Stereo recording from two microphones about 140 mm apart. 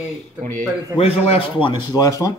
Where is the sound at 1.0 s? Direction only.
45° left (ahead or behind).